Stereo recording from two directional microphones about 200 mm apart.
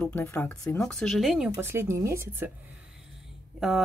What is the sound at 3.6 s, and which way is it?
Speech, centre (ahead or behind).